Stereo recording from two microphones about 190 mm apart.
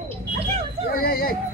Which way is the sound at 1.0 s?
50° left (ahead or behind).